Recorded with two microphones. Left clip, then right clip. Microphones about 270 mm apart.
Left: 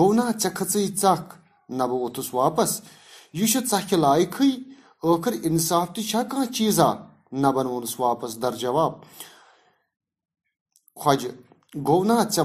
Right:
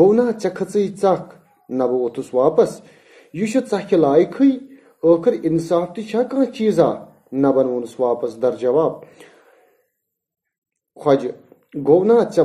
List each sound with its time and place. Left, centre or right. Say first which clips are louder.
0.0 s speech: right 6 dB; left
11.0 s speech: right 5 dB; centre